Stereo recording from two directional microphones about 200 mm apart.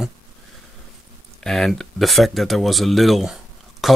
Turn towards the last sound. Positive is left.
turn(degrees=0)  # may be behind; listen again after turning